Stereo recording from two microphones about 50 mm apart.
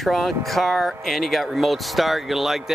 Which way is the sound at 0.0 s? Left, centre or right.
Centre.